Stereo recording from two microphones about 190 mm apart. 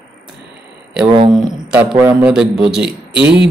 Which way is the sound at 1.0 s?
25° right (ahead or behind).